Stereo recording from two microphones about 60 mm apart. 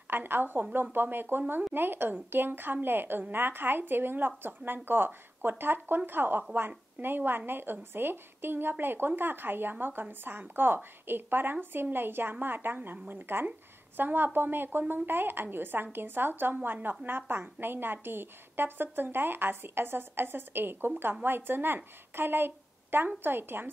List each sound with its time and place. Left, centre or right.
0.1 s a woman's voice: right